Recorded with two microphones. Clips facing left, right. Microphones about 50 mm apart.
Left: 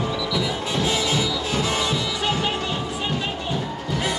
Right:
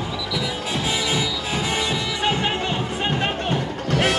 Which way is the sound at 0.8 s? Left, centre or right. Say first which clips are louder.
Even; centre.